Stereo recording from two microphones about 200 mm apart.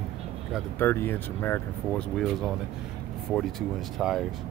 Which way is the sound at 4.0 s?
Centre (ahead or behind).